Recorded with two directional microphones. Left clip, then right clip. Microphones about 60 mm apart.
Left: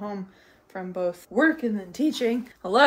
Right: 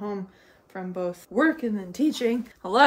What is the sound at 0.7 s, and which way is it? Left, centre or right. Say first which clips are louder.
Speech: left 2 dB; right.